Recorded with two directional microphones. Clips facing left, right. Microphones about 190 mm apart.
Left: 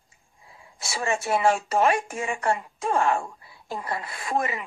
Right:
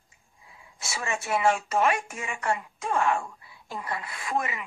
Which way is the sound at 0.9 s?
35° left (ahead or behind).